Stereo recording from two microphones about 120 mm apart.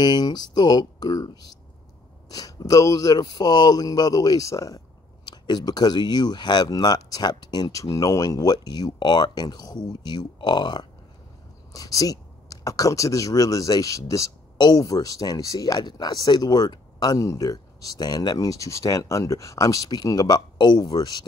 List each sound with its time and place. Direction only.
0.0 s speech: 35° left (ahead or behind)